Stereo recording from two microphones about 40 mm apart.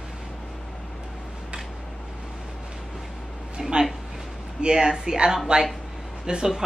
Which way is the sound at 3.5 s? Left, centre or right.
Centre.